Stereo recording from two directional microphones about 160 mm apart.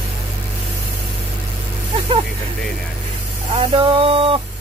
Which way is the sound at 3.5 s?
30° right (ahead or behind).